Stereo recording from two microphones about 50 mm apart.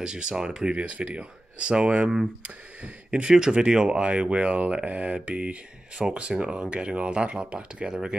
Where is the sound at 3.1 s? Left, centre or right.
Centre.